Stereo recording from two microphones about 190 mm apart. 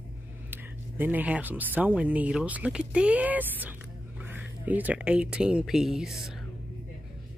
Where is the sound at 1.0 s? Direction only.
10° right (ahead or behind).